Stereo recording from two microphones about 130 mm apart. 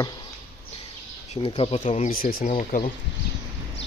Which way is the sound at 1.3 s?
40° left (ahead or behind).